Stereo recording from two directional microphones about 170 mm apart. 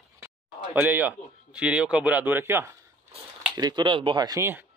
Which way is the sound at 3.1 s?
25° right (ahead or behind).